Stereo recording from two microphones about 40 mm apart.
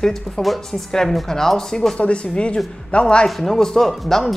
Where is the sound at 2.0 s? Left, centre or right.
Left.